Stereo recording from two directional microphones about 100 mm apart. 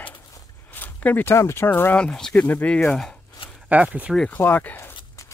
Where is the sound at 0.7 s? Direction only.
15° left (ahead or behind).